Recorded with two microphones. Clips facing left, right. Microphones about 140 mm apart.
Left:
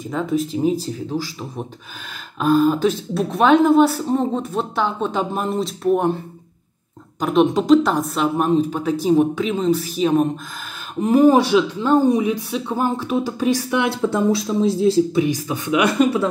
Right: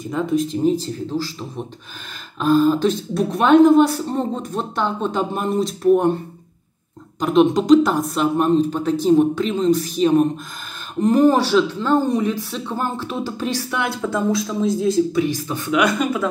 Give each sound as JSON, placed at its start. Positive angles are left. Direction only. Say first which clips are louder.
{"t": 0.0, "sound": "speech", "louder": "right 1 dB", "side_deg": 0}
{"t": 2.3, "sound": "speech", "louder": "even", "side_deg": 10}
{"t": 7.2, "sound": "speech", "louder": "right 1 dB", "side_deg": 0}
{"t": 15.1, "sound": "speech", "louder": "left 1 dB", "side_deg": 15}
{"t": 15.8, "sound": "speech", "louder": "left 3 dB", "side_deg": 30}